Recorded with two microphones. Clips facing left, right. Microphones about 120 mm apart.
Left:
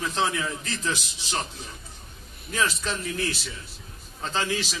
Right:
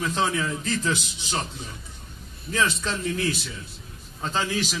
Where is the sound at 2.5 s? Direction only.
Centre (ahead or behind).